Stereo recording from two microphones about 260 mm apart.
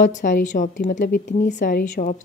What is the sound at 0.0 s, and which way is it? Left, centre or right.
A woman's voice, left.